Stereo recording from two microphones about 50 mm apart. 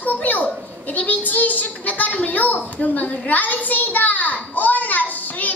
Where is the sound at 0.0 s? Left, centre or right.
Left.